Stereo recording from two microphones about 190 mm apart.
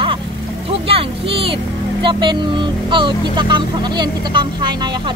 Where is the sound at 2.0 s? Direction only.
25° right (ahead or behind).